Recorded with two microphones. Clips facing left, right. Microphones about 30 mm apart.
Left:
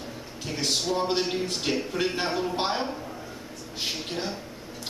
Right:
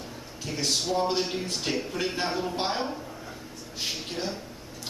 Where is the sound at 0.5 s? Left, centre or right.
Centre.